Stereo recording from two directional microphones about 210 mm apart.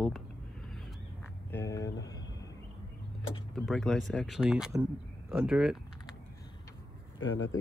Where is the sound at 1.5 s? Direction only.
15° left (ahead or behind).